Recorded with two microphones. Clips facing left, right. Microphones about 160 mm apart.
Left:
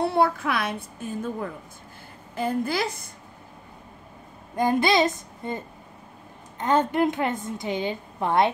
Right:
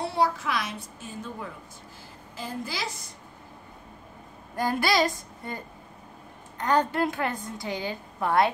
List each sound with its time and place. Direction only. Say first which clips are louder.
0.0 s a child's voice: left 4 dB; 55° left (ahead or behind)
4.6 s a woman's voice: left 4 dB; 20° left (ahead or behind)
6.6 s a woman's voice: left 3 dB; 20° left (ahead or behind)